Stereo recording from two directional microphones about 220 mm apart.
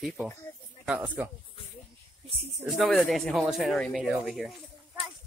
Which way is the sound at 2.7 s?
Centre (ahead or behind).